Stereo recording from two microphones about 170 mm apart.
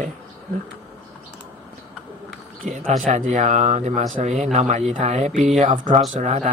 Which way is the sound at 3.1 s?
45° right (ahead or behind).